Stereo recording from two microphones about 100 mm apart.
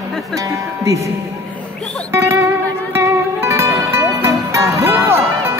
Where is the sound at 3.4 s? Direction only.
25° right (ahead or behind).